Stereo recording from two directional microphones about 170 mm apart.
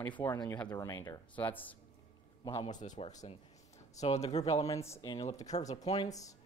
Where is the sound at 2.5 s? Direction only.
30° left (ahead or behind).